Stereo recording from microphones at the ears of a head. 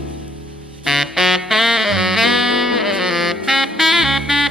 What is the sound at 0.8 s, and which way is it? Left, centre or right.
Saxophone, centre.